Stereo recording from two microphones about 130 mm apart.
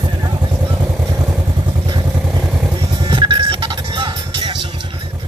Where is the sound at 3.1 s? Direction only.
40° right (ahead or behind).